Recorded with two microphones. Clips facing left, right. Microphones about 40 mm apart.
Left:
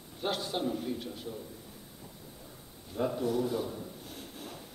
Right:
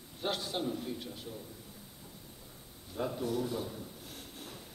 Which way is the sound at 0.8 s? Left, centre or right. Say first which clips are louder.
Left 4 dB; centre.